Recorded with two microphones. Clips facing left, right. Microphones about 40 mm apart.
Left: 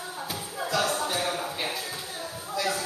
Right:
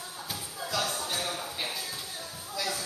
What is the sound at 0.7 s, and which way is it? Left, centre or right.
Music, centre.